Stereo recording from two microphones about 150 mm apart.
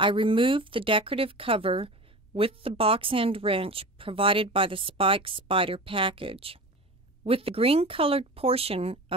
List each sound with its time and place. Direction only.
0.0 s speech: 35° right (ahead or behind)